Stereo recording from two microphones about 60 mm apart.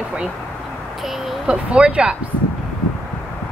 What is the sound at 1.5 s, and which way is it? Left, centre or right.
Speech, centre.